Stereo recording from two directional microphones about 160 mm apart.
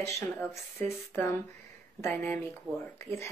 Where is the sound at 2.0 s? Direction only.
15° left (ahead or behind).